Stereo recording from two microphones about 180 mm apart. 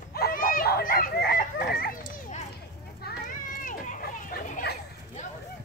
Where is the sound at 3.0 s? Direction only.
50° left (ahead or behind).